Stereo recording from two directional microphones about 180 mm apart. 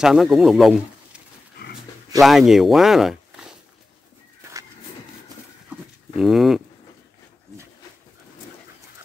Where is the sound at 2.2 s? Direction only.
Centre (ahead or behind).